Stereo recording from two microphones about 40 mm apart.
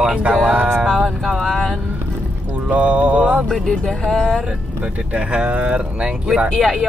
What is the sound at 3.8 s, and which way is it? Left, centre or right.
Speech, centre.